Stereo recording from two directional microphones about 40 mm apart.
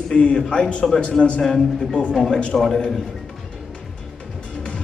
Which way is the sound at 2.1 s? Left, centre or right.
Centre.